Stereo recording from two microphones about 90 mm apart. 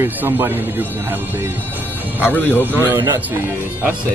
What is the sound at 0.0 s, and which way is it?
Speech, 30° right (ahead or behind).